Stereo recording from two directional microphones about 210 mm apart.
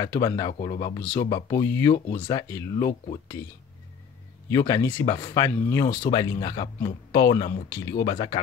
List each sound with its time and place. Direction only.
0.0 s speech: 20° left (ahead or behind)